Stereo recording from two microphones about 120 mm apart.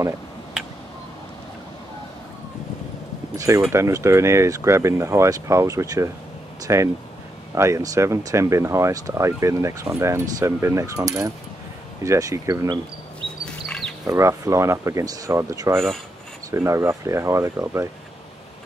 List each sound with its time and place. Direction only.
3.3 s speech: 25° right (ahead or behind)
13.5 s pig: 5° left (ahead or behind)
14.0 s speech: 25° right (ahead or behind)